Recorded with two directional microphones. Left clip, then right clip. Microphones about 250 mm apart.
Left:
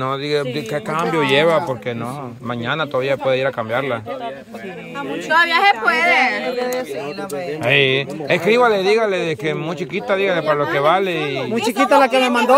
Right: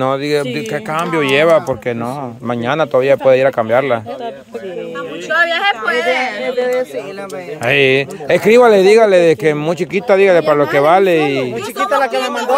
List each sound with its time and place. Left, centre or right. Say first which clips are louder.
0.0 s speech: right 5 dB; centre
5.3 s speech: right 1 dB; left
7.6 s speech: right 4 dB; centre
11.5 s speech: left 1 dB; left